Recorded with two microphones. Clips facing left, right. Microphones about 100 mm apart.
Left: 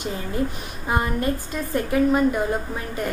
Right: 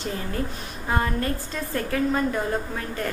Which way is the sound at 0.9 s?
15° left (ahead or behind).